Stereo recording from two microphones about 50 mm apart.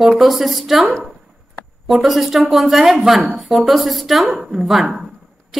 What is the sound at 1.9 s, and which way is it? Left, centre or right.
A child's voice, centre.